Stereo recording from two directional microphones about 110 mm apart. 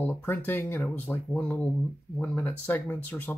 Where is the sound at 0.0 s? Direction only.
15° left (ahead or behind).